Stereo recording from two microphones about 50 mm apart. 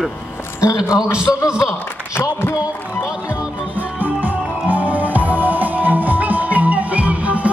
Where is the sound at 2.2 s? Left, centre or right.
Left.